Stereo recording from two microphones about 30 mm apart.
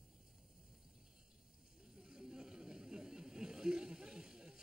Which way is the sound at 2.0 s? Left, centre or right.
Right.